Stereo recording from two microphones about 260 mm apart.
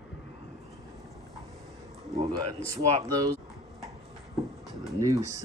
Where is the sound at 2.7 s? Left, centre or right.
Centre.